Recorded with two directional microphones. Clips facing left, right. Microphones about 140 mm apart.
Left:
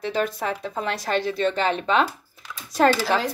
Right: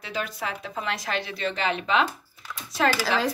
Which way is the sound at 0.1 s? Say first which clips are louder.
Left 4 dB; 40° left (ahead or behind).